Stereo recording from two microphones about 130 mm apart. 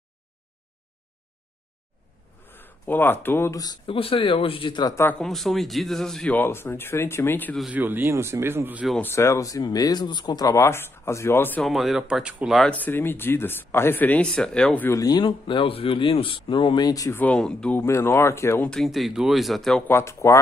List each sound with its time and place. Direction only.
2.4 s speech: 15° left (ahead or behind)
3.8 s speech: 45° left (ahead or behind)
5.2 s speech: centre (ahead or behind)
6.3 s speech: 15° left (ahead or behind)
7.7 s speech: 15° right (ahead or behind)
9.0 s speech: 20° left (ahead or behind)
11.6 s speech: centre (ahead or behind)
12.7 s speech: 15° left (ahead or behind)
14.9 s speech: 30° left (ahead or behind)
17.2 s speech: 5° left (ahead or behind)
17.8 s speech: 20° left (ahead or behind)
18.7 s speech: centre (ahead or behind)
19.9 s speech: 20° left (ahead or behind)